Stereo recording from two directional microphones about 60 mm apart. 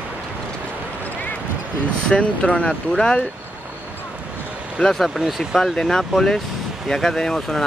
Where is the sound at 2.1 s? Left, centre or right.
Centre.